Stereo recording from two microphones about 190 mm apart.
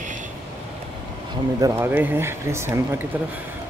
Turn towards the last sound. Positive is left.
turn(degrees=-15)  # may be behind; listen again after turning